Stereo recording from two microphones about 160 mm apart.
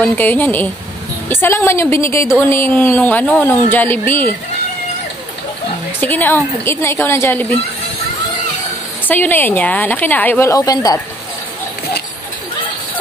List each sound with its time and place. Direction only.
0.0 s a woman's voice: 10° left (ahead or behind)
5.9 s a woman's voice: 10° left (ahead or behind)
9.0 s a woman's voice: 10° left (ahead or behind)